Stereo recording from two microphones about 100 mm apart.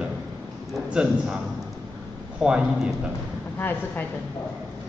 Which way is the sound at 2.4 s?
10° right (ahead or behind).